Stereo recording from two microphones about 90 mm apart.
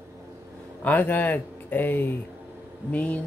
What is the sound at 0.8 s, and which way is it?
Speech, 20° left (ahead or behind).